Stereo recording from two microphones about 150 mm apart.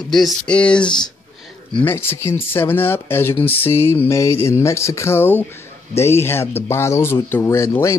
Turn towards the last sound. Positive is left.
turn(degrees=20)  # may be behind; listen again after turning